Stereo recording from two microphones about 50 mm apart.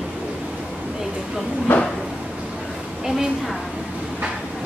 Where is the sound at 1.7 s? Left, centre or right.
Left.